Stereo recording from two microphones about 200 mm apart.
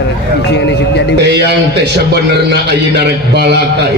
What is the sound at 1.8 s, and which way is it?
A man's voice, 55° right (ahead or behind).